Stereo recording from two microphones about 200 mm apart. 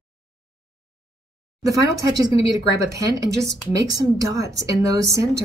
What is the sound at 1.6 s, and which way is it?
Speech, 15° right (ahead or behind).